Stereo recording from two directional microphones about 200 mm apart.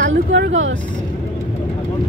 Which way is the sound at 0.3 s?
70° right (ahead or behind).